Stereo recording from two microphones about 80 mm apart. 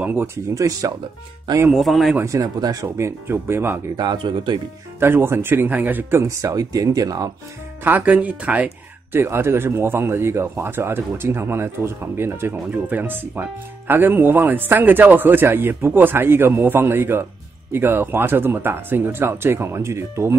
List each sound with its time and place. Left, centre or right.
0.0 s speech: right
0.6 s speech: right
1.7 s speech: centre
2.2 s speech: right
3.9 s speech: right
5.0 s speech: right
6.2 s speech: right
7.8 s speech: right
9.1 s speech: right